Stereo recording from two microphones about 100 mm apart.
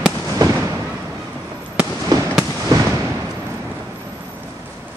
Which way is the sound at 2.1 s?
40° right (ahead or behind).